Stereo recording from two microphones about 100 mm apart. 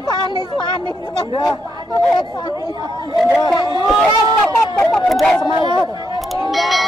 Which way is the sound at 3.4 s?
40° left (ahead or behind).